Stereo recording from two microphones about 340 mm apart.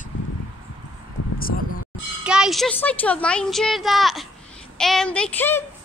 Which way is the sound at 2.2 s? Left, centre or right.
Centre.